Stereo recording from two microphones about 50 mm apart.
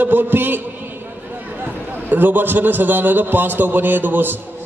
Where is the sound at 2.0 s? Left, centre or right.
Right.